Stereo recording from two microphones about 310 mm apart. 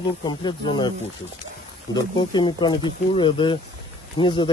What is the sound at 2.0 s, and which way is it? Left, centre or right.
Speech, centre.